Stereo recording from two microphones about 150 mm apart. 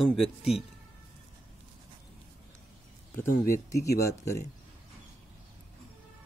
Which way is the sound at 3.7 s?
20° left (ahead or behind).